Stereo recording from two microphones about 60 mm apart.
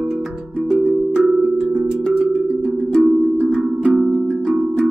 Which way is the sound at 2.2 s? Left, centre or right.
Centre.